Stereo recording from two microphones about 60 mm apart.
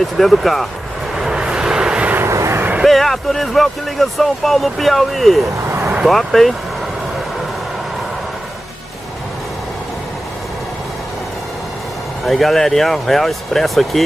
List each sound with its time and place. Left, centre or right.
0.0 s speech: centre
1.1 s vehicle: centre
2.2 s vehicle: right
2.8 s speech: centre
12.3 s speech: centre